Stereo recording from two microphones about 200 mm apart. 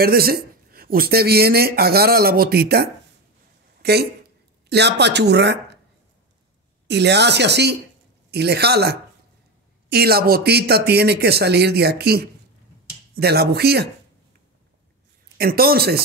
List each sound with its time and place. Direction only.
0.0 s speech: 50° right (ahead or behind)
6.9 s speech: 55° right (ahead or behind)
15.3 s speech: 50° right (ahead or behind)